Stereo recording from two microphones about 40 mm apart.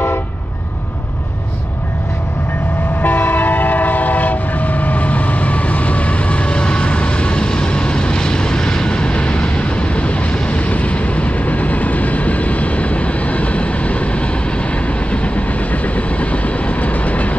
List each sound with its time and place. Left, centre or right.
3.0 s train: left
10.6 s vehicle: left